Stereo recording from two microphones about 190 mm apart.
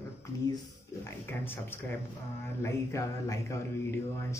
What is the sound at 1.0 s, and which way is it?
Speech, 10° left (ahead or behind).